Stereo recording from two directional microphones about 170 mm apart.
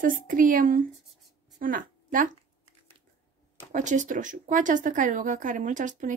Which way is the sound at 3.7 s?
45° right (ahead or behind).